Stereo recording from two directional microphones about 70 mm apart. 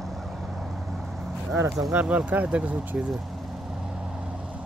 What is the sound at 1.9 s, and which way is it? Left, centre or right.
Speech, right.